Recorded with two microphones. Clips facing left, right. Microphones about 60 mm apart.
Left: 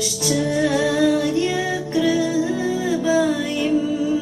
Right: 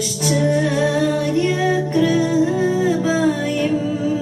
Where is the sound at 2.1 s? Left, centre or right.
Right.